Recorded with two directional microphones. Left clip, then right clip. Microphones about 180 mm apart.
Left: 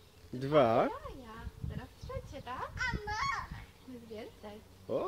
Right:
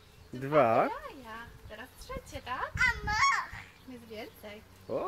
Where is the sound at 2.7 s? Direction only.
10° right (ahead or behind).